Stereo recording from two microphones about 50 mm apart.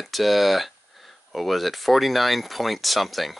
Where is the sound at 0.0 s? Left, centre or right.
Centre.